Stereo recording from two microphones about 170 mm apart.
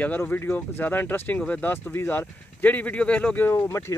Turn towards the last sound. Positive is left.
turn(degrees=15)  # may be behind; listen again after turning